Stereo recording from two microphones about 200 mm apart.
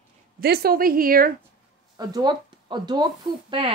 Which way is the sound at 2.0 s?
20° right (ahead or behind).